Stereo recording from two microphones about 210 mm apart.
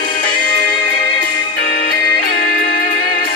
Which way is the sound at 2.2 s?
45° left (ahead or behind).